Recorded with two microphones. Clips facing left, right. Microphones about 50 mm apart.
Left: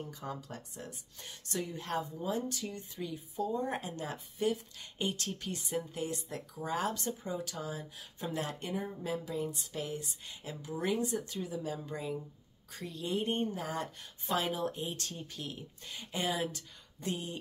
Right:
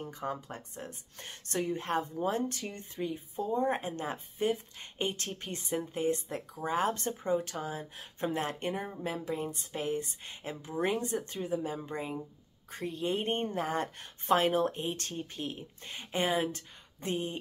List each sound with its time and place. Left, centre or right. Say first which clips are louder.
0.0 s speech: right 4 dB; right